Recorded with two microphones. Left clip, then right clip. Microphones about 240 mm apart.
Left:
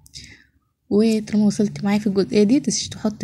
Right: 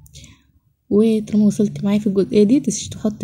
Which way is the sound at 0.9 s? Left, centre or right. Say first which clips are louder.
Right 3 dB; left.